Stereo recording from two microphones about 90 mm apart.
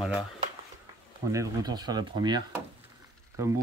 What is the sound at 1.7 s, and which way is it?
Speech, 50° right (ahead or behind).